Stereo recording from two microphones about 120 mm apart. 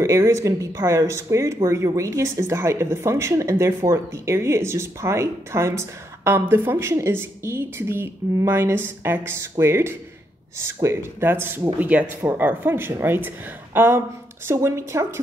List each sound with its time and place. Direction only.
0.0 s speech: 25° right (ahead or behind)